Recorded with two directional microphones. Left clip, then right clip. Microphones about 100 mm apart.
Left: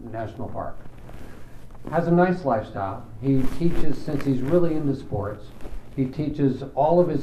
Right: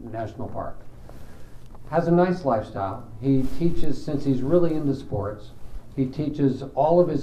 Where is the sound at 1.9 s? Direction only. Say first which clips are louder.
Even; 30° right (ahead or behind).